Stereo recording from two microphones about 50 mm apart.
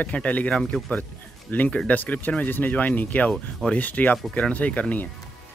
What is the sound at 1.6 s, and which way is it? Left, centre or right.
Speech, left.